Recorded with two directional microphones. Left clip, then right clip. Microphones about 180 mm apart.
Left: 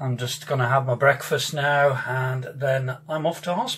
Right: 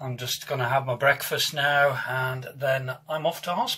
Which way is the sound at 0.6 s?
35° right (ahead or behind).